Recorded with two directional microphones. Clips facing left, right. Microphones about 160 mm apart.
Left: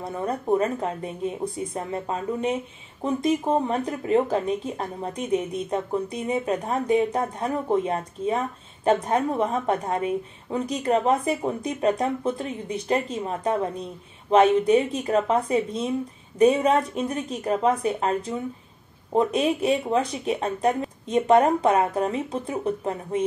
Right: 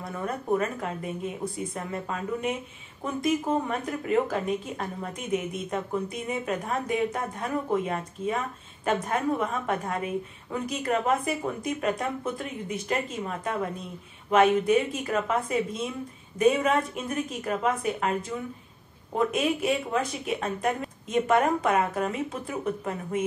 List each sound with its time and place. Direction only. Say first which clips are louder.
0.0 s a woman's voice: left 4 dB; 30° left (ahead or behind)
19.1 s speech: left 4 dB; 30° left (ahead or behind)